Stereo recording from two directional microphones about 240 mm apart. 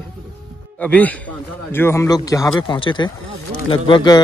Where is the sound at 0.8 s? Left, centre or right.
Centre.